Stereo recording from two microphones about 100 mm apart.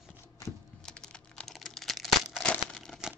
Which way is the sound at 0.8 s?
5° left (ahead or behind).